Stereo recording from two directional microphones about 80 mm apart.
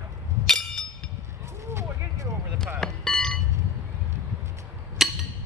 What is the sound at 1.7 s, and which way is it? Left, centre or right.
Vehicle, right.